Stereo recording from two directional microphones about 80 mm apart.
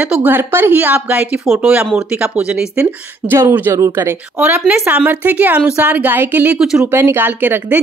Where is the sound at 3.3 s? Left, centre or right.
Right.